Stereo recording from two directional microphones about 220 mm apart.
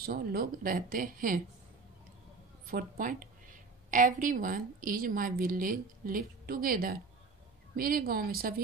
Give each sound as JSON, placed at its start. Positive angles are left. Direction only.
{"t": 0.0, "sound": "speech", "side_deg": -40}
{"t": 2.6, "sound": "a woman's voice", "side_deg": -40}